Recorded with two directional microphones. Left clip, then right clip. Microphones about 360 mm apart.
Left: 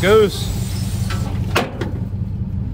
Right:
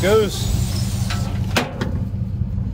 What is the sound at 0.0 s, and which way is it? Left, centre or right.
Vehicle, left.